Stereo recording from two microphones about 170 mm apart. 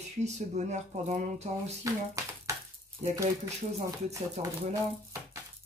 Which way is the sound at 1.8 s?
20° right (ahead or behind).